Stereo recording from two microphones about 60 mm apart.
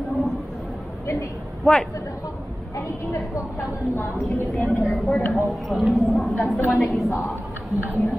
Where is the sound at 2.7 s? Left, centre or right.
Left.